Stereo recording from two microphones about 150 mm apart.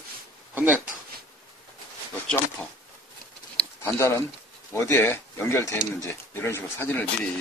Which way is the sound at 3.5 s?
15° left (ahead or behind).